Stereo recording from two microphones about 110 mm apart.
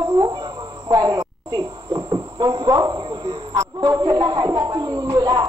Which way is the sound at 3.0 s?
50° right (ahead or behind).